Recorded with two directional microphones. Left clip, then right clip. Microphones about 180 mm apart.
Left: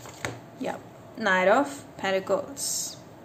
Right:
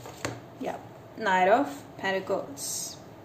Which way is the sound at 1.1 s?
20° left (ahead or behind).